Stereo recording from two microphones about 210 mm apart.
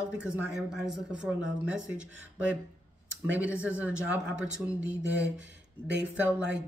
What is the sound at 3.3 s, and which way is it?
Speech, 5° right (ahead or behind).